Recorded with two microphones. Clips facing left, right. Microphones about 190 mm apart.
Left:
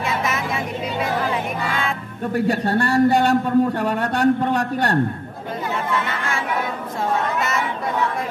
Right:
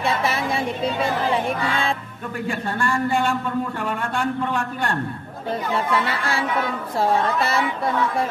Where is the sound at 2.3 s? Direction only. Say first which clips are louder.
Left 7 dB; 40° left (ahead or behind).